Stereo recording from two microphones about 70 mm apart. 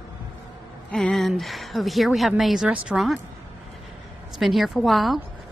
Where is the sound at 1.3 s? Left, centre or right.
Centre.